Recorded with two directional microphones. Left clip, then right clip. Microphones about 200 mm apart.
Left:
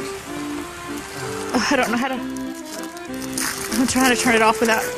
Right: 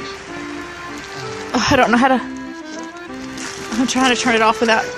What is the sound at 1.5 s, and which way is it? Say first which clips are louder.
Music: right 5 dB; 15° right (ahead or behind).